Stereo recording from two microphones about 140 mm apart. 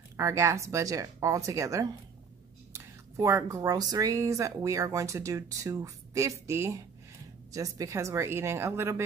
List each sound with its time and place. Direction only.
0.2 s speech: 20° right (ahead or behind)